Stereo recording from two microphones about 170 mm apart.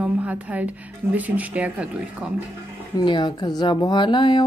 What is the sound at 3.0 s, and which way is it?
Speech, 25° left (ahead or behind).